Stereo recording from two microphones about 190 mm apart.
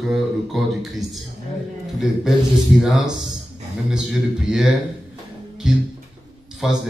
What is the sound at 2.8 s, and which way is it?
Speech, centre (ahead or behind).